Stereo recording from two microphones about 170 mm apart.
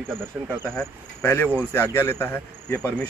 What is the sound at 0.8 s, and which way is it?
Speech, 10° left (ahead or behind).